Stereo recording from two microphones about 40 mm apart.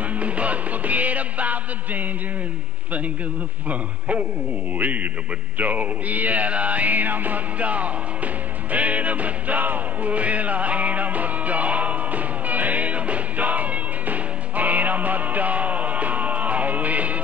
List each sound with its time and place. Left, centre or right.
0.1 s music: right
4.7 s a man's voice: right
5.6 s music: right